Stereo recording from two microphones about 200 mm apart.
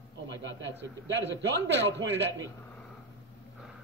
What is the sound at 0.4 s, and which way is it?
A man's voice, 65° right (ahead or behind).